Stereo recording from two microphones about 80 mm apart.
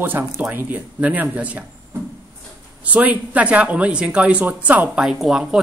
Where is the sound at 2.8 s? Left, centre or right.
Centre.